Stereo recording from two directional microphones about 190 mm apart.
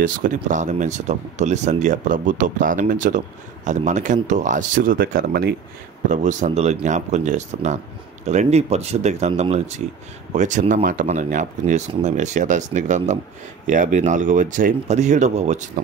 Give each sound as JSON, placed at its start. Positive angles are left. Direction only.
{"t": 0.0, "sound": "speech", "side_deg": -45}
{"t": 6.0, "sound": "speech", "side_deg": -40}